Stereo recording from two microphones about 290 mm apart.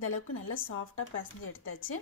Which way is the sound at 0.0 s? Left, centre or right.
Left.